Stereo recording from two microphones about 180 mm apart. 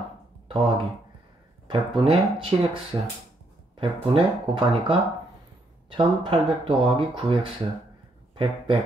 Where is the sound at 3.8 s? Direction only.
30° right (ahead or behind).